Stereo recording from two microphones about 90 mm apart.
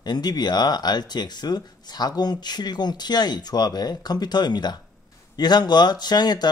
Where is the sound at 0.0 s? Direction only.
50° left (ahead or behind).